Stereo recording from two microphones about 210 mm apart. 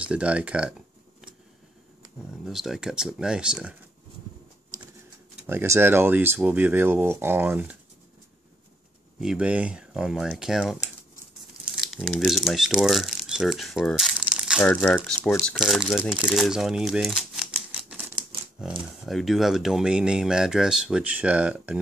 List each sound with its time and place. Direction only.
0.0 s speech: 5° right (ahead or behind)
2.4 s speech: centre (ahead or behind)
5.5 s speech: 10° right (ahead or behind)
9.2 s speech: 5° right (ahead or behind)
19.0 s speech: centre (ahead or behind)